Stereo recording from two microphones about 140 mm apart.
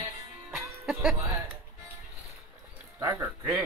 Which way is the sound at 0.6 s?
5° right (ahead or behind).